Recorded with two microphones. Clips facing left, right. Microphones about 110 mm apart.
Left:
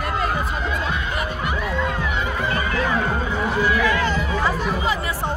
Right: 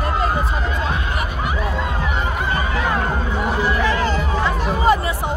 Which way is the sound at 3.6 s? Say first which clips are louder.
Even; 30° right (ahead or behind).